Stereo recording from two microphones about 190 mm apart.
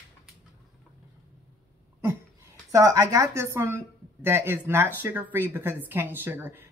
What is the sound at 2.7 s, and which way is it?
Speech, 15° right (ahead or behind).